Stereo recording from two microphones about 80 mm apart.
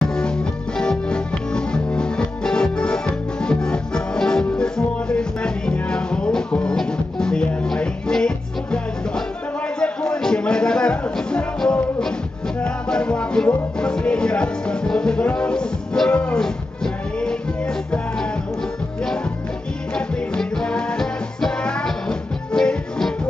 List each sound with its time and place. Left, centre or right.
0.0 s music: centre
9.8 s music: centre
19.9 s music: centre